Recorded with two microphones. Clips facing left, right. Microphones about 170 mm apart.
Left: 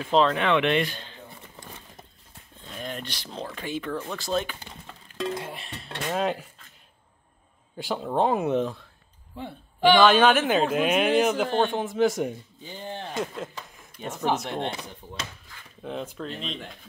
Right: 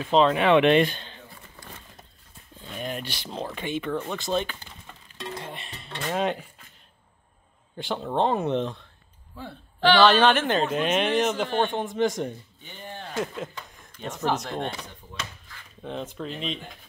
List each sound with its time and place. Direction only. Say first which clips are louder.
0.0 s speech: right 1 dB; centre (ahead or behind)
0.3 s speech: right 4 dB; 15° right (ahead or behind)
2.6 s a sound: right 2 dB; 5° right (ahead or behind)
3.5 s speech: right 2 dB; centre (ahead or behind)
5.3 s a sound: left 3 dB; 5° left (ahead or behind)
6.0 s speech: even; centre (ahead or behind)
7.7 s speech: left 1 dB; 5° left (ahead or behind)
12.6 s speech: left 4 dB; 25° left (ahead or behind)
13.2 s speech: right 4 dB; centre (ahead or behind)
14.5 s speech: left 1 dB; 25° left (ahead or behind)
15.8 s speech: even; centre (ahead or behind)